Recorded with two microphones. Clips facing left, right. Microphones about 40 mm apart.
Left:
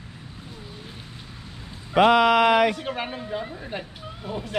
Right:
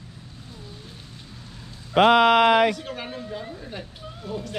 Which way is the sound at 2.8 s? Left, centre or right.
Left.